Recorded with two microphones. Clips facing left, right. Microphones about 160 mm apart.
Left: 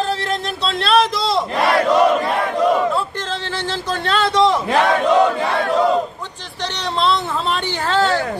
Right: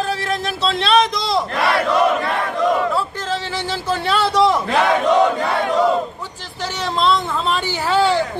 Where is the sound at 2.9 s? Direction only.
10° right (ahead or behind).